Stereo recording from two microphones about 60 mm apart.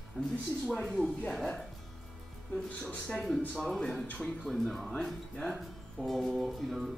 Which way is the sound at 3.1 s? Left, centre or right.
Centre.